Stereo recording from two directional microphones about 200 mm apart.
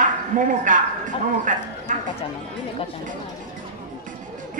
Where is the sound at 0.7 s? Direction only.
40° right (ahead or behind).